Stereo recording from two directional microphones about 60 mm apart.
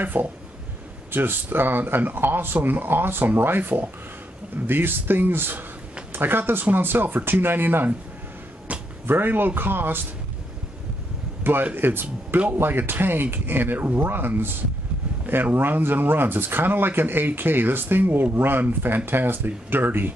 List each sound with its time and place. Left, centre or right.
0.0 s speech: right
9.0 s speech: right
11.4 s speech: right
15.5 s speech: right